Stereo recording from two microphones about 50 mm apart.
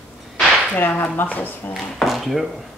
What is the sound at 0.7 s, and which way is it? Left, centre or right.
Whip, left.